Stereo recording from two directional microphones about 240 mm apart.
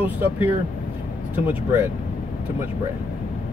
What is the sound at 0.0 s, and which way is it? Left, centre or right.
Speech, centre.